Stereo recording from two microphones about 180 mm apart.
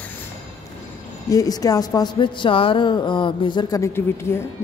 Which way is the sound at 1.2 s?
20° left (ahead or behind).